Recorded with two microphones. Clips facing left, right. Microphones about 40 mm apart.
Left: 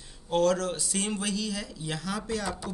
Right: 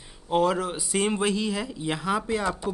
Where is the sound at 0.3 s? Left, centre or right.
Centre.